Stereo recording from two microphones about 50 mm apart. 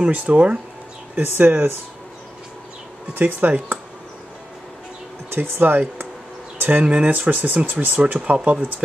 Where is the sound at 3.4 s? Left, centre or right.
Right.